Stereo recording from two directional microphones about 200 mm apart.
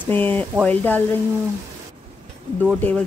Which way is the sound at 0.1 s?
10° left (ahead or behind).